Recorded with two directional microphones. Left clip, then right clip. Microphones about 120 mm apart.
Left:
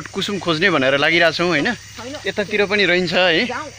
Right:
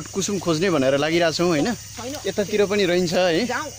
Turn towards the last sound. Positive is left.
turn(degrees=-5)  # may be behind; listen again after turning